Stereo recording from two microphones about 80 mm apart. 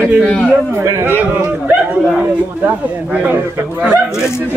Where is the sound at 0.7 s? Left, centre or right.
Right.